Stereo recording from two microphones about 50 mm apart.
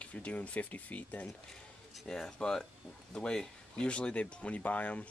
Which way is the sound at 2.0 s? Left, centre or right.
Centre.